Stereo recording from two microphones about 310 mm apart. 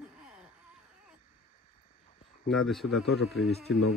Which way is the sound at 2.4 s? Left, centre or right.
Centre.